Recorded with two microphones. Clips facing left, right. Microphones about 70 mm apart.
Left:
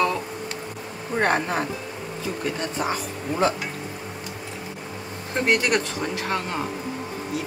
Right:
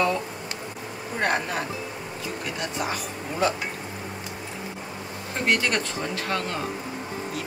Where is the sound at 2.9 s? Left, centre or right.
Left.